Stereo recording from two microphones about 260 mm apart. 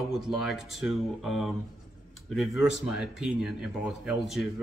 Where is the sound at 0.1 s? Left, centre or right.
Centre.